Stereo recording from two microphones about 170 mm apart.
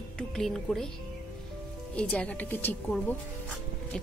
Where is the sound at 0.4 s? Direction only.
5° left (ahead or behind).